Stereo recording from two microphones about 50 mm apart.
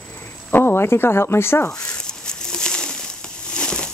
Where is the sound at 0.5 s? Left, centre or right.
Left.